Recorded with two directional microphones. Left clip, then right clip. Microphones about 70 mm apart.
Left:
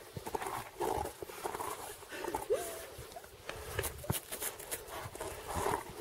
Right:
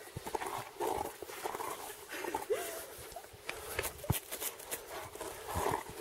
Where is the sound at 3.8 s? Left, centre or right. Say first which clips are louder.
Even; right.